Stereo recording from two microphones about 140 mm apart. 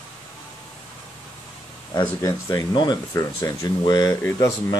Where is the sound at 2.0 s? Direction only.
25° left (ahead or behind).